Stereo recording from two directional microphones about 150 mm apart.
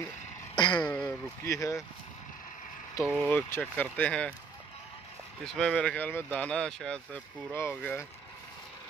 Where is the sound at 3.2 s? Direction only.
10° left (ahead or behind).